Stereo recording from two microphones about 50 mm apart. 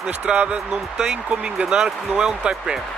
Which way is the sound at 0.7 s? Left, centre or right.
Centre.